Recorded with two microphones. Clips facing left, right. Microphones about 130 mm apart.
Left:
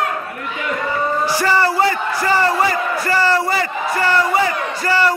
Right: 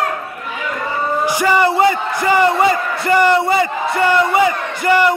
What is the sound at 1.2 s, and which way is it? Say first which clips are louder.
A man's voice: right 4 dB; 15° right (ahead or behind).